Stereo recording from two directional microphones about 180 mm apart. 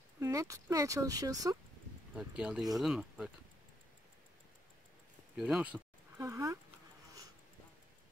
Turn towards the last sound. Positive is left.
turn(degrees=-20)  # may be behind; listen again after turning